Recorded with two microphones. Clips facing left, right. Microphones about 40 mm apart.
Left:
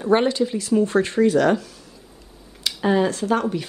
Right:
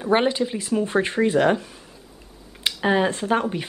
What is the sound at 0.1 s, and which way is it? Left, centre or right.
Speech, centre.